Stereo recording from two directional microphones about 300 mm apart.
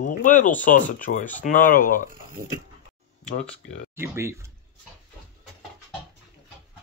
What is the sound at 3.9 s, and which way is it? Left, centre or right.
Speech, centre.